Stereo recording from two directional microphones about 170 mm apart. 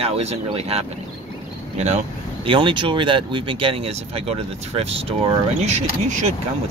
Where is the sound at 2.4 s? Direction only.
30° right (ahead or behind).